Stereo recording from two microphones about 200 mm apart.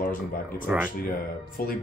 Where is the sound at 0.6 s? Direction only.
5° right (ahead or behind).